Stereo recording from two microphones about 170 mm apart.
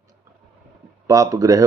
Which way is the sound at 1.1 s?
20° right (ahead or behind).